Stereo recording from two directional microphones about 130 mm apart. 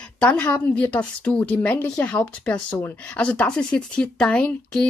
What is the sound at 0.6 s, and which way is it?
Speech, 10° left (ahead or behind).